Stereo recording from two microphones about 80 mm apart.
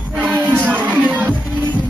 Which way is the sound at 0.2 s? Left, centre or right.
Right.